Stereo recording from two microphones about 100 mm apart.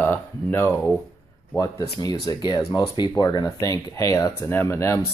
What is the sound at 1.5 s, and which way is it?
Speech, 35° left (ahead or behind).